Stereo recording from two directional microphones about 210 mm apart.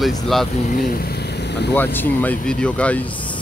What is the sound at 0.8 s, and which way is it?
Vehicle, 45° left (ahead or behind).